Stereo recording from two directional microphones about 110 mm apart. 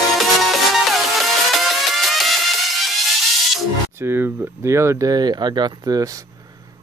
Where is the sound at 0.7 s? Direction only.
Centre (ahead or behind).